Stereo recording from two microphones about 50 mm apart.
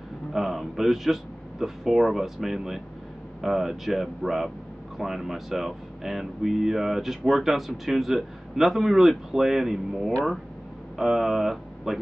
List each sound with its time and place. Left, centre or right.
0.3 s speech: centre